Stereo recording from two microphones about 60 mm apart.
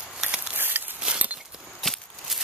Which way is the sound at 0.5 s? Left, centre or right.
Right.